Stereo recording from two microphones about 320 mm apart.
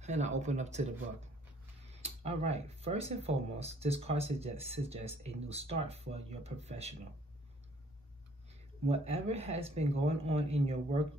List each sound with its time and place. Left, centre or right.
0.0 s speech: right
2.0 s speech: centre
8.8 s speech: centre